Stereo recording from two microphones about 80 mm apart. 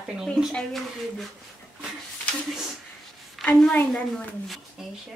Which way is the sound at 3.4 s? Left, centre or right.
Centre.